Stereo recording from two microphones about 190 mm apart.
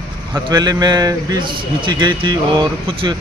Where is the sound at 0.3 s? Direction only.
20° right (ahead or behind).